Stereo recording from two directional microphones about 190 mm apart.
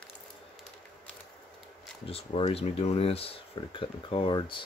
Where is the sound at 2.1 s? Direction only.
30° left (ahead or behind).